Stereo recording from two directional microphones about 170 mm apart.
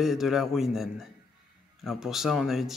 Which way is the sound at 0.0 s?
Centre (ahead or behind).